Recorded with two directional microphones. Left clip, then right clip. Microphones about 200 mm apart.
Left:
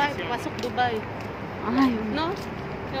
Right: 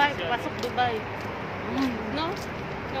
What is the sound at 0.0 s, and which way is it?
A woman's voice, 30° left (ahead or behind).